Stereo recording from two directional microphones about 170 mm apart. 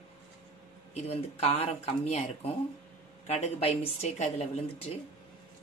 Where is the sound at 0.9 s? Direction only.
40° left (ahead or behind).